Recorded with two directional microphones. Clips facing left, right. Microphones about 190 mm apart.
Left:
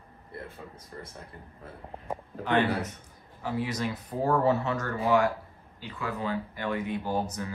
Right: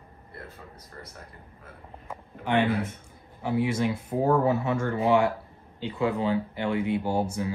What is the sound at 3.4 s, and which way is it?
Speech, 15° right (ahead or behind).